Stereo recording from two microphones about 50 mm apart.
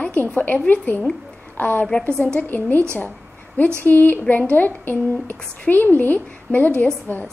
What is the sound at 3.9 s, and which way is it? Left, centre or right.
A woman's voice, left.